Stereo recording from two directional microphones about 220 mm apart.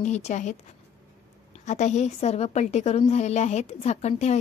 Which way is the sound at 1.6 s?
35° left (ahead or behind).